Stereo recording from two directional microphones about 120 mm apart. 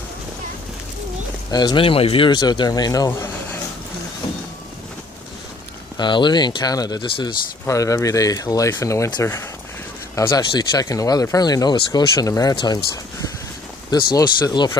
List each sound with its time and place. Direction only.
1.5 s speech: 35° left (ahead or behind)
5.9 s speech: 40° left (ahead or behind)
7.6 s speech: 25° left (ahead or behind)
10.1 s speech: 30° left (ahead or behind)